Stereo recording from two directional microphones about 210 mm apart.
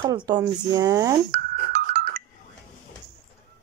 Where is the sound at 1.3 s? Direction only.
50° right (ahead or behind).